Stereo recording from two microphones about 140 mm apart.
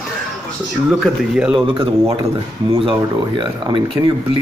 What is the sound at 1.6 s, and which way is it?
Speech, 40° right (ahead or behind).